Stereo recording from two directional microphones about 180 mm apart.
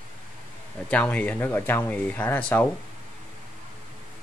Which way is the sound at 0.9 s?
10° left (ahead or behind).